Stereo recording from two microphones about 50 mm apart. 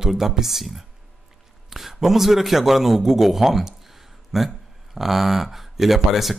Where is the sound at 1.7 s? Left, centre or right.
Centre.